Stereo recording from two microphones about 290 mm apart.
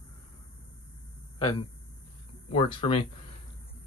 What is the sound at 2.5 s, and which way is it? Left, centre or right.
Speech, centre.